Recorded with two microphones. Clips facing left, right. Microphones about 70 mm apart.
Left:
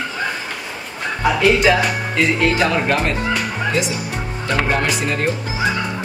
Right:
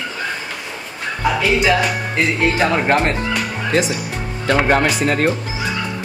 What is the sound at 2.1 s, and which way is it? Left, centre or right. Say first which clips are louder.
Speech: left 1 dB; centre.